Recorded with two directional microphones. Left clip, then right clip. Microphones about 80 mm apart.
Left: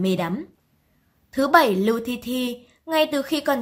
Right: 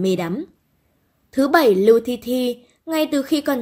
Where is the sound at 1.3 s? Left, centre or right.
Right.